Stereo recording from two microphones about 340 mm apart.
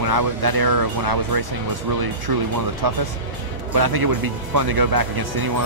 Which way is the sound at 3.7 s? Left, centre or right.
Right.